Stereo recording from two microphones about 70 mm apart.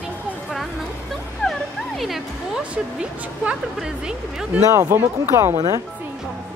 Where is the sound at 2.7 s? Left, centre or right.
Centre.